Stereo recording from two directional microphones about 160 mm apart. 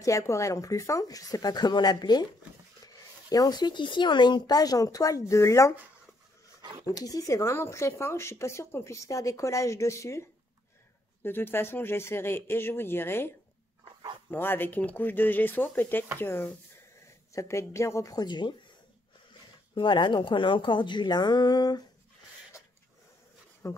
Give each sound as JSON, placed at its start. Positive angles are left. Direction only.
{"t": 0.0, "sound": "speech", "side_deg": 20}
{"t": 3.3, "sound": "speech", "side_deg": 25}
{"t": 6.9, "sound": "speech", "side_deg": 25}
{"t": 11.2, "sound": "speech", "side_deg": 15}
{"t": 14.3, "sound": "speech", "side_deg": 15}
{"t": 19.7, "sound": "speech", "side_deg": 30}
{"t": 23.6, "sound": "speech", "side_deg": 20}